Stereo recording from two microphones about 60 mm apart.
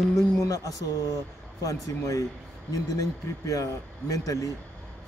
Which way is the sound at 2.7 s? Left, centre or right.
Left.